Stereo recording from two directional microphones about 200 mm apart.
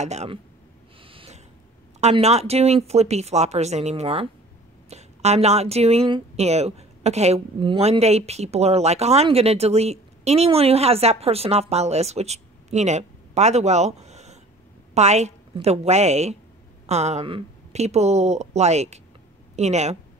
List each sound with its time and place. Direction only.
0.0 s a woman's voice: 35° right (ahead or behind)
1.0 s snort: 25° right (ahead or behind)
2.0 s a woman's voice: 35° right (ahead or behind)